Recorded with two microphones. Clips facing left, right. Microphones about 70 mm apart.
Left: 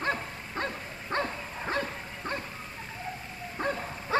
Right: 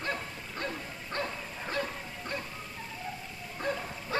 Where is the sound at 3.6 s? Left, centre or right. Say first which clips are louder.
Left 2 dB; left.